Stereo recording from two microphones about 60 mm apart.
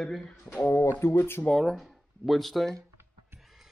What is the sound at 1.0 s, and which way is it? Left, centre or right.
Speech, left.